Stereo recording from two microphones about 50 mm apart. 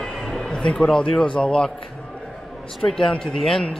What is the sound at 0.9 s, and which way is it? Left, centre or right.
Speech, centre.